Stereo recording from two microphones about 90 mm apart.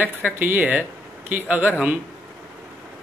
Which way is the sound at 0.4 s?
20° right (ahead or behind).